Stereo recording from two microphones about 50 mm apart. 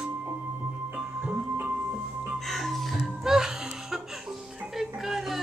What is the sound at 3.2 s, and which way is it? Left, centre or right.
Music, centre.